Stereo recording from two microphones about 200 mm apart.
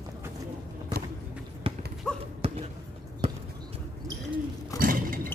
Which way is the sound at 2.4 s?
30° right (ahead or behind).